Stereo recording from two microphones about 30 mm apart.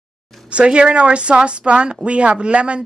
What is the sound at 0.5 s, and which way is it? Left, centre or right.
Speech, right.